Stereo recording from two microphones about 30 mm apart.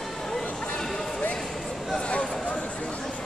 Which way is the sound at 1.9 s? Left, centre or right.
Left.